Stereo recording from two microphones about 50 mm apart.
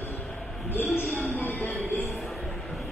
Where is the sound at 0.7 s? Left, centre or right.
Left.